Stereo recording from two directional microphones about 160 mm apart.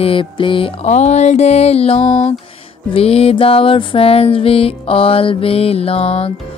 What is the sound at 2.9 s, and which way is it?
Music, 40° left (ahead or behind).